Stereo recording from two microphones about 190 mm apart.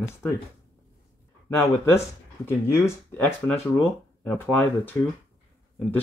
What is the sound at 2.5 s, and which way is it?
Speech, 15° left (ahead or behind).